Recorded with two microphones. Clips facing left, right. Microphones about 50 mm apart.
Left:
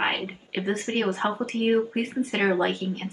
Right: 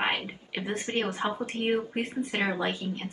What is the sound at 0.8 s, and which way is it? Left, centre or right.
Speech, left.